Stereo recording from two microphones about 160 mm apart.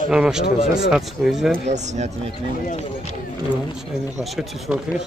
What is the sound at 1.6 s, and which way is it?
Speech, 45° right (ahead or behind).